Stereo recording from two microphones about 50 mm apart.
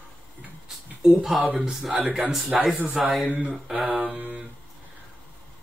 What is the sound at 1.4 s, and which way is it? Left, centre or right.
Speech, centre.